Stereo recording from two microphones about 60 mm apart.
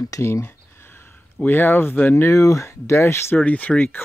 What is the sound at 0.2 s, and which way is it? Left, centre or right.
Speech, left.